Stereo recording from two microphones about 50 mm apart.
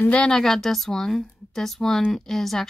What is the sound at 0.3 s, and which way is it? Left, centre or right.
A woman's voice, centre.